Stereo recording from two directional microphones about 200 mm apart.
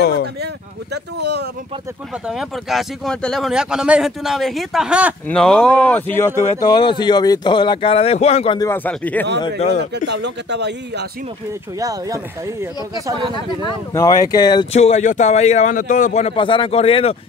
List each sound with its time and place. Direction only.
1.1 s speech: 55° right (ahead or behind)
2.2 s speech: centre (ahead or behind)
6.3 s a man's voice: 35° left (ahead or behind)
6.6 s speech: 20° left (ahead or behind)
8.5 s speech: 10° left (ahead or behind)
9.6 s a man's voice: 35° left (ahead or behind)
10.0 s speech: 60° right (ahead or behind)
11.8 s speech: 15° right (ahead or behind)
13.3 s speech: 20° left (ahead or behind)
14.7 s a man's voice: 30° left (ahead or behind)